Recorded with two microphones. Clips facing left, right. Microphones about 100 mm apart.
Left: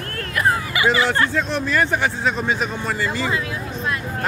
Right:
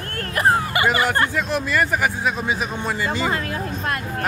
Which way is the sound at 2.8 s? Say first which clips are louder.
Even; 20° right (ahead or behind).